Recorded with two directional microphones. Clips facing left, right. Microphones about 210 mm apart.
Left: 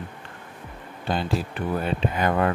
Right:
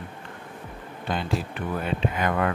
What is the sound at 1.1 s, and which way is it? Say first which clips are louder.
Speech: left 2 dB; 30° left (ahead or behind).